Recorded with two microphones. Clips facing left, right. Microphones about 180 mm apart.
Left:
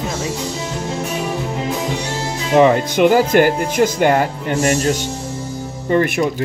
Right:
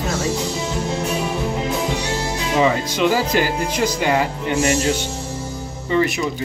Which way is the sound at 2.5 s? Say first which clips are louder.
Left 7 dB; 55° left (ahead or behind).